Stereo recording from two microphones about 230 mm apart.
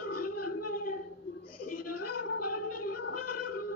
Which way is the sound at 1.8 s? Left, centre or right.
Left.